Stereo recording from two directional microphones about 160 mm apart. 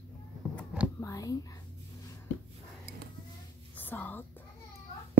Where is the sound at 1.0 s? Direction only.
20° left (ahead or behind).